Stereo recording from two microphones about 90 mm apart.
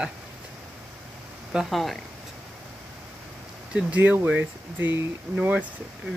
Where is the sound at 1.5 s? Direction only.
5° right (ahead or behind).